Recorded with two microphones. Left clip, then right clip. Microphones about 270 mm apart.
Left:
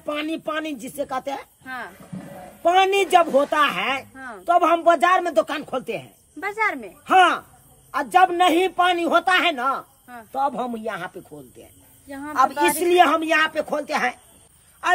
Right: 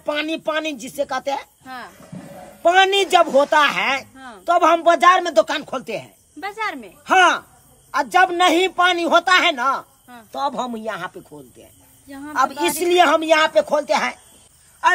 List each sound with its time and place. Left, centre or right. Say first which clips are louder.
0.0 s a man's voice: right 4 dB; centre
2.1 s a sound: even; right
2.6 s a man's voice: right 3 dB; centre
6.4 s speech: left 2 dB; centre
7.1 s a man's voice: right 2 dB; centre